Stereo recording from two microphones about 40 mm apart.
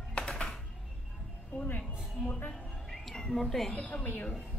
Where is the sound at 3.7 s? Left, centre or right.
Left.